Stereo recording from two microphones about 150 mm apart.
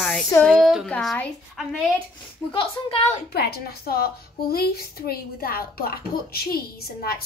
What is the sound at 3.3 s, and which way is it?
A woman's voice, 90° left.